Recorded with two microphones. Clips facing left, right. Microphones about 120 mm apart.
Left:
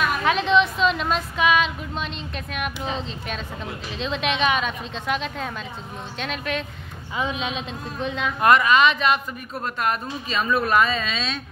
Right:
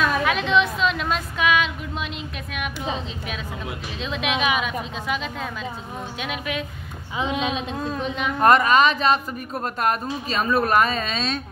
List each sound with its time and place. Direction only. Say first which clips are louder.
0.2 s a woman's voice: left 1 dB; centre (ahead or behind)
7.2 s a woman's voice: right 2 dB; 20° right (ahead or behind)
8.4 s speech: right 1 dB; 40° right (ahead or behind)
10.3 s speech: right 1 dB; 40° right (ahead or behind)